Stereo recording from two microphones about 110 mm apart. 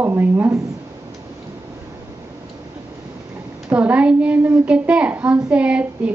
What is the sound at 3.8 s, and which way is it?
A woman's voice, 10° right (ahead or behind).